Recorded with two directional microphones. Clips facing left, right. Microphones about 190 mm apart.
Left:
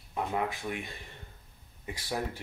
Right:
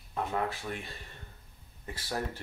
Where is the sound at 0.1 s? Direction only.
10° left (ahead or behind).